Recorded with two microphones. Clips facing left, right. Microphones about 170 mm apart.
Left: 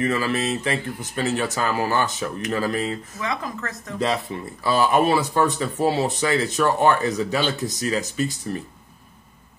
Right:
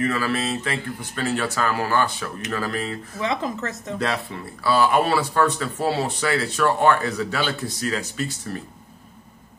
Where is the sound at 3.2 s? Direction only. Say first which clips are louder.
Right 6 dB; 25° right (ahead or behind).